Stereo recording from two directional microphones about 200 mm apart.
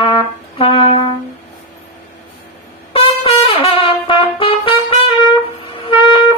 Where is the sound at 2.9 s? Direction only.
30° left (ahead or behind).